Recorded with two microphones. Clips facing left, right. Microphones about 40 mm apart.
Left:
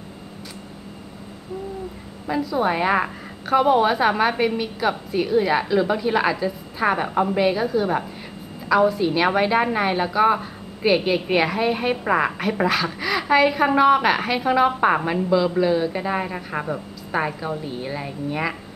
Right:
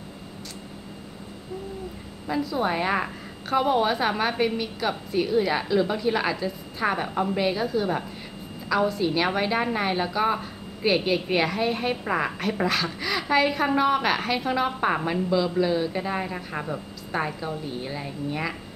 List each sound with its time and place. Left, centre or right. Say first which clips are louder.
2.2 s a woman's voice: left 4 dB; centre
7.3 s a woman's voice: left 4 dB; centre